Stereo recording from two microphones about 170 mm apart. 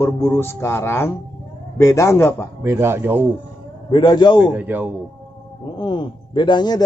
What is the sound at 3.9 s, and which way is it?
Speech, 25° left (ahead or behind).